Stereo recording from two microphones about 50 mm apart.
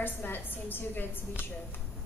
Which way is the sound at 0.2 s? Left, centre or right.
Left.